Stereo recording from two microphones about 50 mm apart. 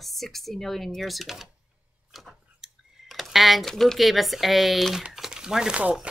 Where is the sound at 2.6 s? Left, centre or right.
Centre.